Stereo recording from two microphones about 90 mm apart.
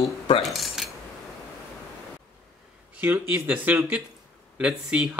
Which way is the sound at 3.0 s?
20° right (ahead or behind).